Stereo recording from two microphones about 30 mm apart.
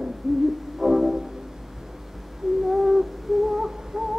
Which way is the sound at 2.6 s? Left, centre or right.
Centre.